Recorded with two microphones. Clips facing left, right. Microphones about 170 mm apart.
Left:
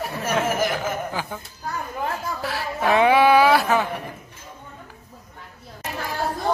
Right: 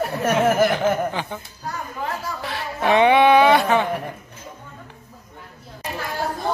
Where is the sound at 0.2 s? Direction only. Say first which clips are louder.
Right 5 dB; 65° right (ahead or behind).